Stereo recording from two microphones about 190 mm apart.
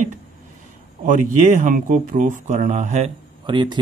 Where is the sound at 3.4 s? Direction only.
25° right (ahead or behind).